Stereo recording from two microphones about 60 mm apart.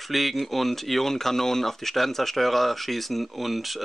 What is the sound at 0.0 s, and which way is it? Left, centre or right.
Speech, centre.